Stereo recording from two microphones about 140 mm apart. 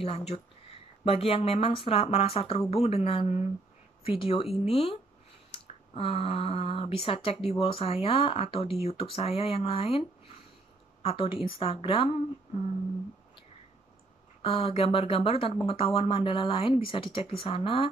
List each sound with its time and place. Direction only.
0.0 s speech: 45° left (ahead or behind)
14.4 s speech: 45° left (ahead or behind)